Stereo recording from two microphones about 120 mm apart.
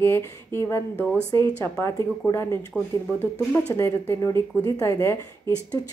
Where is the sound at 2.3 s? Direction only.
25° left (ahead or behind).